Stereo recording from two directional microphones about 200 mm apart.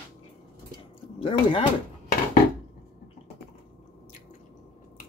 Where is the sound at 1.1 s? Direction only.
25° left (ahead or behind).